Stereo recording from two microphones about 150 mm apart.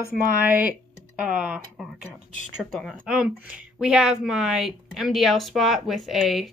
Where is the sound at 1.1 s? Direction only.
10° right (ahead or behind).